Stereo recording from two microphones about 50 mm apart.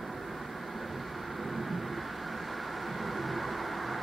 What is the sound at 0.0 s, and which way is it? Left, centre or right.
Vehicle, centre.